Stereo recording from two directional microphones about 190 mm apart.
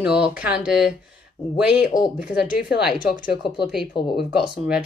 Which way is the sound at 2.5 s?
55° left (ahead or behind).